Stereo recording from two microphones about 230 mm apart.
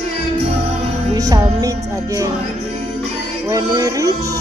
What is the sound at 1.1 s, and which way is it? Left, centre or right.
Music, centre.